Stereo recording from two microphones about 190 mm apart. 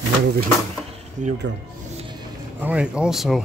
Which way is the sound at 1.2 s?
40° right (ahead or behind).